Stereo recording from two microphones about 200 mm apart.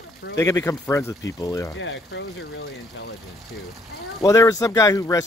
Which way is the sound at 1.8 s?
65° left (ahead or behind).